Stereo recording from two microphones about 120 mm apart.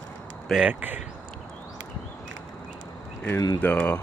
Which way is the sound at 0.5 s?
10° right (ahead or behind).